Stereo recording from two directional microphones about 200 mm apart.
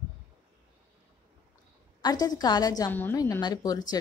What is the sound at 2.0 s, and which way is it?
A woman's voice, 20° left (ahead or behind).